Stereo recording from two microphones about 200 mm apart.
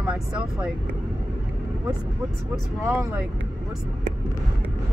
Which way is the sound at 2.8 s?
15° right (ahead or behind).